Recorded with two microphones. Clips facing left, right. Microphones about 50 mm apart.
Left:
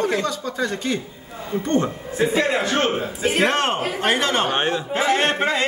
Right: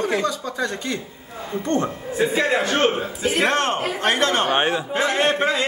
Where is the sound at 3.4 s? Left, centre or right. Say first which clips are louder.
Even; left.